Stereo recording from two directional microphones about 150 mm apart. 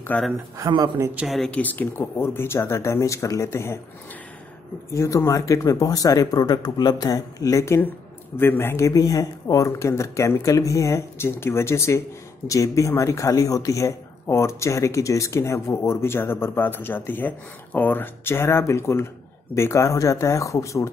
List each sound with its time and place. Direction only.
0.1 s speech: 10° left (ahead or behind)
0.6 s speech: 30° right (ahead or behind)
0.9 s speech: 20° right (ahead or behind)
1.2 s speech: centre (ahead or behind); by 3.8 s 15° left (ahead or behind)
4.9 s a man's voice: 20° left (ahead or behind)